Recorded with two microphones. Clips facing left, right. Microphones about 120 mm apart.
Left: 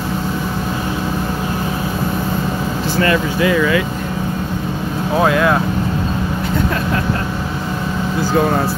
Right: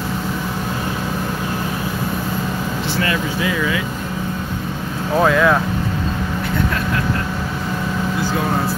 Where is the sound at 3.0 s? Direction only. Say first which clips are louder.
Left 8 dB; 55° left (ahead or behind).